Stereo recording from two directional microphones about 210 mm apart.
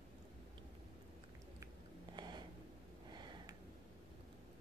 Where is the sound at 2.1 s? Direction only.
20° right (ahead or behind).